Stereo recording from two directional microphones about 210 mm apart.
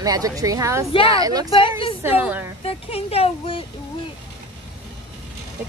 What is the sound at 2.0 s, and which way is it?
Speech, 10° right (ahead or behind).